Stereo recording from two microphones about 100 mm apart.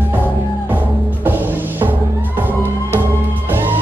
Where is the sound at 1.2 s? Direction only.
20° right (ahead or behind).